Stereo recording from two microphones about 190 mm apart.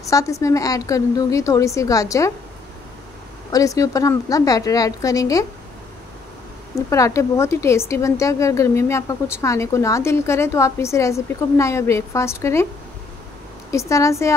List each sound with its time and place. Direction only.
0.0 s a woman's voice: 15° left (ahead or behind)
3.5 s a woman's voice: 15° left (ahead or behind)
6.7 s a woman's voice: 15° left (ahead or behind)
13.7 s a woman's voice: 15° left (ahead or behind)